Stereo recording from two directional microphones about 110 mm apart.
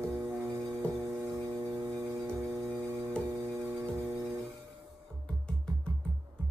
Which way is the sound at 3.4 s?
25° right (ahead or behind).